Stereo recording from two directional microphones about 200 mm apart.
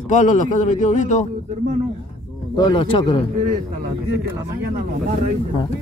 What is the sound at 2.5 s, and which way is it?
Speech, 25° left (ahead or behind).